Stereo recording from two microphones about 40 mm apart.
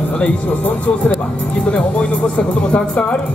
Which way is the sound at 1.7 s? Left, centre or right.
Left.